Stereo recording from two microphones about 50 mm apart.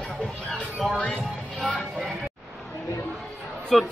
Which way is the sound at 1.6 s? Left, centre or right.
Centre.